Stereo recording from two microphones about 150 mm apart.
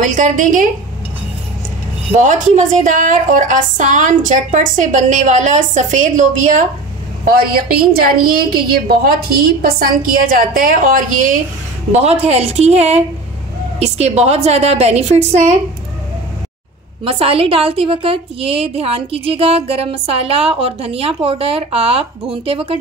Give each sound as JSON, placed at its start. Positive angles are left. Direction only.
{"t": 0.0, "sound": "a woman's voice", "side_deg": -55}
{"t": 2.1, "sound": "a woman's voice", "side_deg": -55}
{"t": 7.2, "sound": "a woman's voice", "side_deg": -80}
{"t": 11.9, "sound": "a woman's voice", "side_deg": -45}
{"t": 17.0, "sound": "a woman's voice", "side_deg": -40}